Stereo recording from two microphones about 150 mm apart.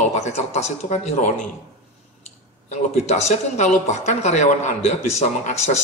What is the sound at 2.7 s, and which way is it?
Speech, 45° left (ahead or behind).